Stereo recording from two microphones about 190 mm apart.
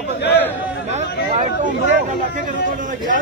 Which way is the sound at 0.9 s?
40° right (ahead or behind).